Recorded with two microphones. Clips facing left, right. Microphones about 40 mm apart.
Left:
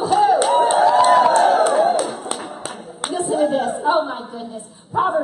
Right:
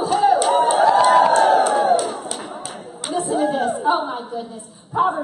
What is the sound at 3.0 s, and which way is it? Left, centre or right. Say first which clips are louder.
Clapping: even; left.